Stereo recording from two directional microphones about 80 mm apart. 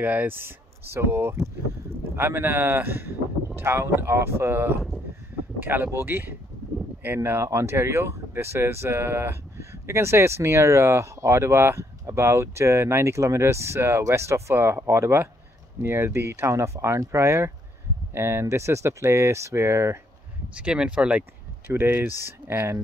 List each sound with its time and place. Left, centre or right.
0.0 s speech: right
20.5 s speech: centre
21.6 s speech: right